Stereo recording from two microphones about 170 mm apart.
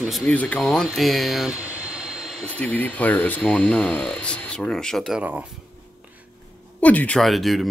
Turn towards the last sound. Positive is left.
turn(degrees=0)  # may be behind; listen again after turning